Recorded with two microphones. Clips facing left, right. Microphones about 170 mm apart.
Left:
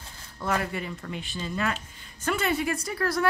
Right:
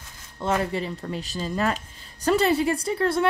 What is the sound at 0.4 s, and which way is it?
A woman's voice, 25° right (ahead or behind).